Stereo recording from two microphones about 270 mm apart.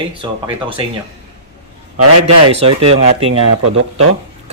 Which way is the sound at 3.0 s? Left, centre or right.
Right.